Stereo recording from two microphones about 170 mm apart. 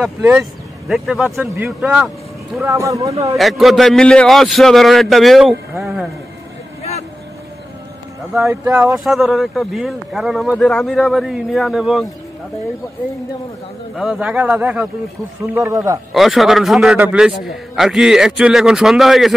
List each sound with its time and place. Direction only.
0.0 s speech: 5° right (ahead or behind)
2.6 s speech: 20° right (ahead or behind)
3.3 s speech: centre (ahead or behind)
6.8 s vehicle: 40° left (ahead or behind)
8.4 s a man's voice: 15° right (ahead or behind)
8.9 s speech: centre (ahead or behind)
13.9 s a man's voice: centre (ahead or behind); by 16.0 s 20° right (ahead or behind)
16.1 s speech: centre (ahead or behind)